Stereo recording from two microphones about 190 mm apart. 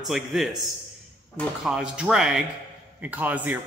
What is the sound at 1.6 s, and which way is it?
A man's voice, 5° right (ahead or behind).